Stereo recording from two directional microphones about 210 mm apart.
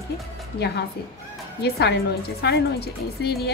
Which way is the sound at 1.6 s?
50° left (ahead or behind).